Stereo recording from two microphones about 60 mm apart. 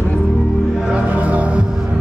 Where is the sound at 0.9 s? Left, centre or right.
Right.